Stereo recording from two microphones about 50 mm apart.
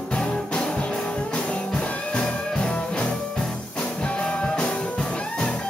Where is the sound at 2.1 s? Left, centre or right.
Centre.